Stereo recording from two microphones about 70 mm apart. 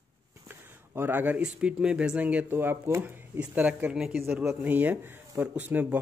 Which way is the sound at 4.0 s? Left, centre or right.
Centre.